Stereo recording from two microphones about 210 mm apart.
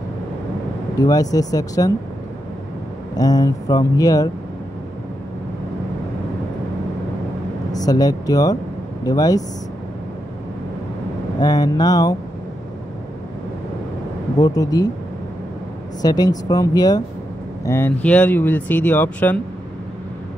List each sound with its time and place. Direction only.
0.9 s speech: 15° left (ahead or behind)
3.2 s speech: 15° left (ahead or behind)
7.7 s speech: 15° left (ahead or behind)
11.3 s speech: 20° left (ahead or behind)
14.4 s speech: 15° left (ahead or behind)
16.0 s speech: 20° left (ahead or behind)